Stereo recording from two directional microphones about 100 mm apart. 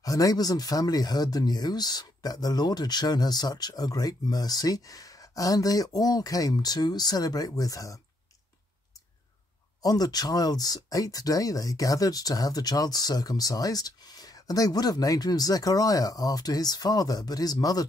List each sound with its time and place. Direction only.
0.0 s speech: 35° left (ahead or behind)
9.8 s speech: 40° left (ahead or behind)